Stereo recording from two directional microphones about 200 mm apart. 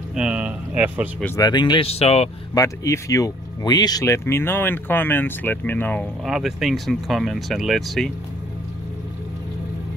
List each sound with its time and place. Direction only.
0.1 s a sound: 5° right (ahead or behind)
1.2 s speech: 15° left (ahead or behind)
2.5 s speech: 15° left (ahead or behind)
6.2 s speech: centre (ahead or behind)